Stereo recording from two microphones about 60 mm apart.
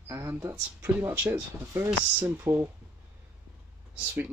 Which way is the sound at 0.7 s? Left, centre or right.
Right.